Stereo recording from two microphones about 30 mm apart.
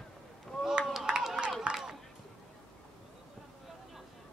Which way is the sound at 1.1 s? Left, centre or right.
Right.